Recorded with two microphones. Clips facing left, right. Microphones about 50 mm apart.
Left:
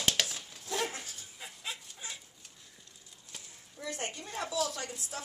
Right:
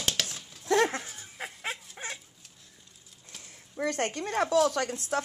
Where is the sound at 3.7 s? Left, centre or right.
Right.